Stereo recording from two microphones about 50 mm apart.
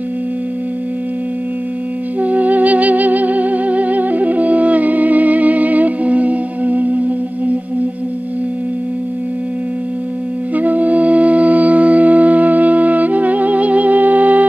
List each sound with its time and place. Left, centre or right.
2.1 s music: right
10.5 s music: right